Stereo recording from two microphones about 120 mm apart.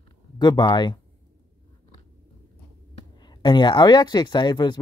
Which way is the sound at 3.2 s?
40° left (ahead or behind).